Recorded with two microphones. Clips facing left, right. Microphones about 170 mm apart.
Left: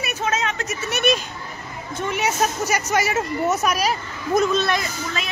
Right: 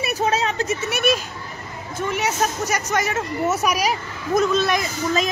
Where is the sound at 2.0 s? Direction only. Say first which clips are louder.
Even; centre (ahead or behind).